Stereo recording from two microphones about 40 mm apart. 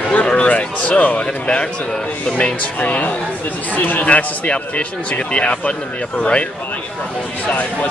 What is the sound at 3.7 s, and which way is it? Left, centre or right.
Speech, left.